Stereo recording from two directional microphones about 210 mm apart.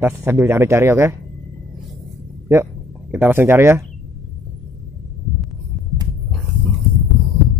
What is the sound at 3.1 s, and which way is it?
Speech, 10° right (ahead or behind).